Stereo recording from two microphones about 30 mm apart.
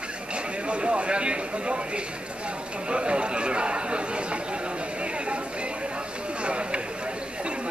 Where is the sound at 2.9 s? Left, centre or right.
Right.